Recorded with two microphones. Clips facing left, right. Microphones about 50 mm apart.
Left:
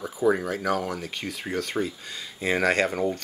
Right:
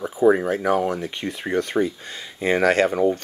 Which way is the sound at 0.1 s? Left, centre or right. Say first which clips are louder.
Right 6 dB; right.